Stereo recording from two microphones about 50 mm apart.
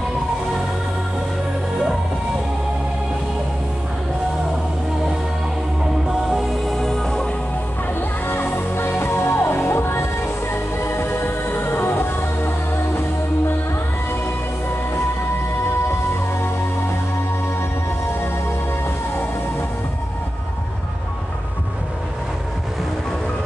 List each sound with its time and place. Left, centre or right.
6.2 s music: centre
8.3 s music: left
15.9 s music: left